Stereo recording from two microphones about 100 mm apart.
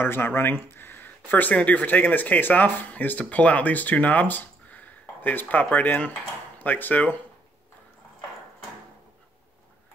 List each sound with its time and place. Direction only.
0.0 s speech: 20° left (ahead or behind)